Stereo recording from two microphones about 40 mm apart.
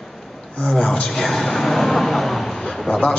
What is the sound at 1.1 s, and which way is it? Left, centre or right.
A man's voice, centre.